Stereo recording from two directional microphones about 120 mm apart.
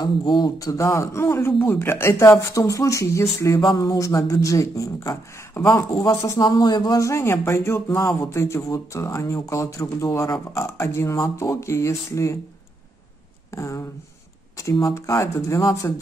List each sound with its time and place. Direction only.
0.0 s speech: 35° left (ahead or behind)
13.5 s speech: 25° left (ahead or behind)